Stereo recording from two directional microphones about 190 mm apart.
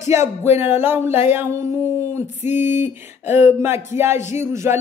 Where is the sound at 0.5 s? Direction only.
10° right (ahead or behind).